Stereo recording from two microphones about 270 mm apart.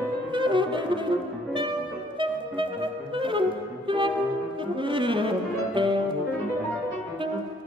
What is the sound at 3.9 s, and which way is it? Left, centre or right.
Brass instrument, centre.